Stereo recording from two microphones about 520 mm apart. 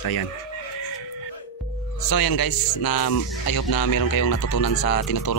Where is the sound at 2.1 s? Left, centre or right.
Left.